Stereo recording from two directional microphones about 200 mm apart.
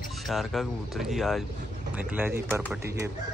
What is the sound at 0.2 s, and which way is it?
Speech, centre (ahead or behind).